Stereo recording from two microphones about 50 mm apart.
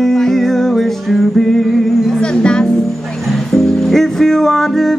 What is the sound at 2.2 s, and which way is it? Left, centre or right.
Music, centre.